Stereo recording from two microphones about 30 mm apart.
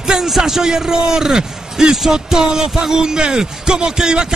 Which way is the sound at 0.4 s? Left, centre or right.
Centre.